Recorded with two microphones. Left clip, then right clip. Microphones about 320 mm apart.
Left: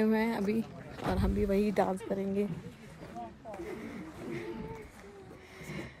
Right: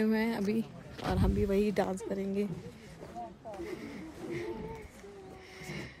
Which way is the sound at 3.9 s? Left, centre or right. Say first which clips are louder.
Right 1 dB; right.